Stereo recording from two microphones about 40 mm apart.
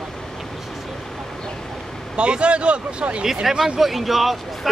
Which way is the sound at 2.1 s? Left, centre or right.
Right.